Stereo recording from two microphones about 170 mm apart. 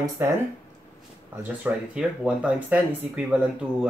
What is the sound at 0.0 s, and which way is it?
Speech, 20° right (ahead or behind).